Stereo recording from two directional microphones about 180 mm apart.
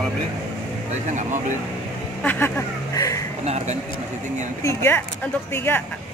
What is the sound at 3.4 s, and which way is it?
Speech, 35° right (ahead or behind).